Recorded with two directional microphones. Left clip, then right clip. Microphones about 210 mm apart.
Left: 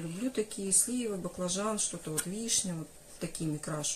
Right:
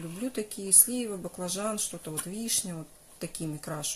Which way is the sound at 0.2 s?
35° right (ahead or behind).